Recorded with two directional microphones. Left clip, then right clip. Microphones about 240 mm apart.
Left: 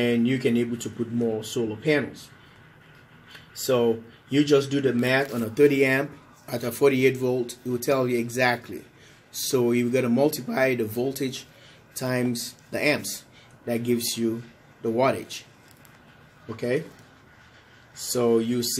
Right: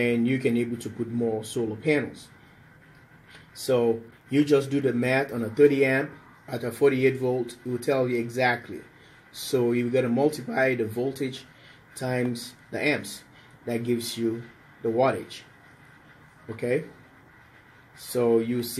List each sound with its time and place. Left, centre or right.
0.0 s speech: centre
3.6 s speech: centre
16.4 s speech: centre
18.1 s speech: centre